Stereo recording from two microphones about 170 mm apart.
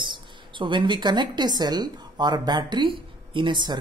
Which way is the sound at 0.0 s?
30° right (ahead or behind).